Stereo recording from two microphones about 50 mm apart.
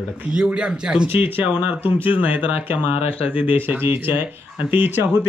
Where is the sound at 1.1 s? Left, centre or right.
Right.